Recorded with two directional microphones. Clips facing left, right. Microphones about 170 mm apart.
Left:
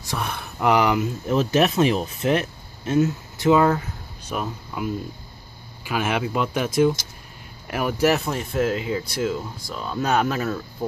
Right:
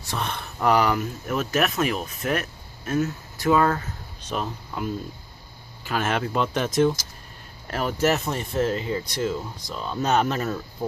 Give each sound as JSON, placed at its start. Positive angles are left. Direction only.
{"t": 0.0, "sound": "speech", "side_deg": 10}
{"t": 1.3, "sound": "speech", "side_deg": 30}